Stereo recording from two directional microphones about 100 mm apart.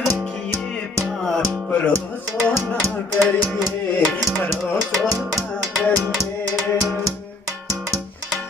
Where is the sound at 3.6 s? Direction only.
5° right (ahead or behind).